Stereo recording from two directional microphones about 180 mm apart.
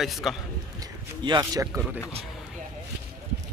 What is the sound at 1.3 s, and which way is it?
Speech, 20° right (ahead or behind).